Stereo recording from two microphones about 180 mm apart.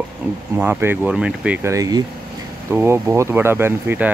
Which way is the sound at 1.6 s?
20° right (ahead or behind).